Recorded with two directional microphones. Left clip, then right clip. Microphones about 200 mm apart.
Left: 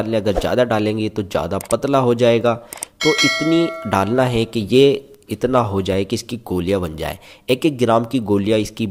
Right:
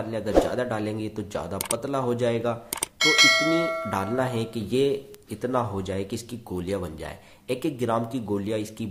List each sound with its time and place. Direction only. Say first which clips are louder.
0.1 s speech: left 3 dB; 35° left (ahead or behind)
3.0 s speech: left 2 dB; centre (ahead or behind)
3.9 s speech: left 10 dB; 40° left (ahead or behind)